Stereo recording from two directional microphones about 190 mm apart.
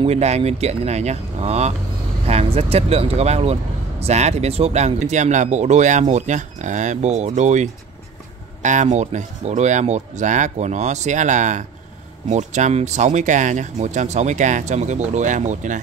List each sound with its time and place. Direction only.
0.0 s speech: 35° right (ahead or behind)